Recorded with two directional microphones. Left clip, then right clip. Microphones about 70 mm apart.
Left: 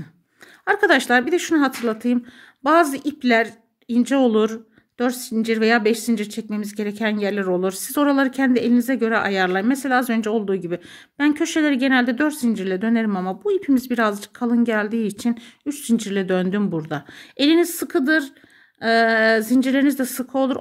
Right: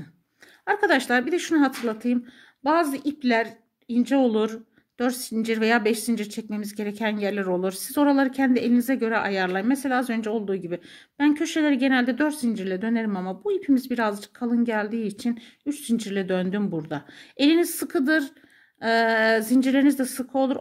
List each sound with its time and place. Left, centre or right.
0.7 s speech: left
2.6 s speech: left
4.9 s speech: centre; by 17.0 s left
17.4 s speech: left